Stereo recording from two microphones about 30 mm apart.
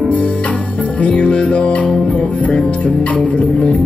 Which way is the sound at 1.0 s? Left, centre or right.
Left.